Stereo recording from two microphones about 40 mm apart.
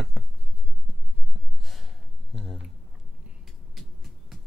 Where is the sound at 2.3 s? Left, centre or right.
Centre.